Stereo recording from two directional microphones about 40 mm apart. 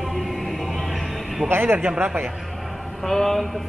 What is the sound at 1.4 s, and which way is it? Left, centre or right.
Speech, right.